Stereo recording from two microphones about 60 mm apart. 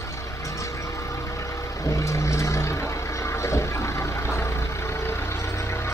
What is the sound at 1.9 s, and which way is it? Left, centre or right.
Vehicle, left.